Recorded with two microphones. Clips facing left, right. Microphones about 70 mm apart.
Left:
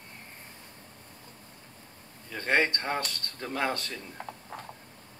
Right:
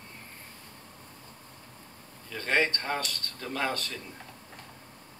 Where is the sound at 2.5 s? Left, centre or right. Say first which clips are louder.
Left 1 dB; centre.